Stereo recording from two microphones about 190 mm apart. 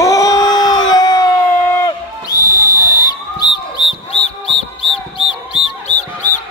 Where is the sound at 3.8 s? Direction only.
25° left (ahead or behind).